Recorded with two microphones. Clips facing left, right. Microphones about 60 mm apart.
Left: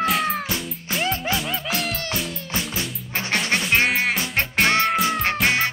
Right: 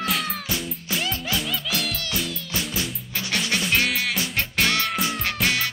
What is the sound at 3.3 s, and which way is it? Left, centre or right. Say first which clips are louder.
Music: left 2 dB; left.